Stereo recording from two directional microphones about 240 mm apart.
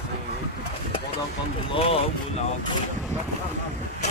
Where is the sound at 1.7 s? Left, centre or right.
Left.